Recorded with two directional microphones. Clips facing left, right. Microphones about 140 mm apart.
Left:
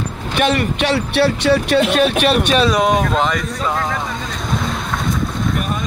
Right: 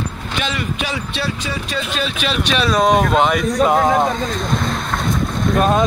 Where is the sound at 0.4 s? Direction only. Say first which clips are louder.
Left 7 dB; 60° left (ahead or behind).